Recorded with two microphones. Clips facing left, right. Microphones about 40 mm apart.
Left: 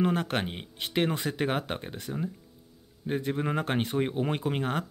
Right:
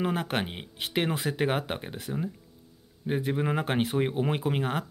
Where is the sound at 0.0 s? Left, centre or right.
Centre.